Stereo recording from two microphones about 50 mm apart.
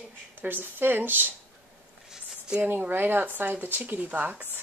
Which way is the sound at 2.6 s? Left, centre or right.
Right.